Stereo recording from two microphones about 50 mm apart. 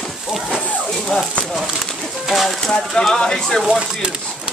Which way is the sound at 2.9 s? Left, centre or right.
Centre.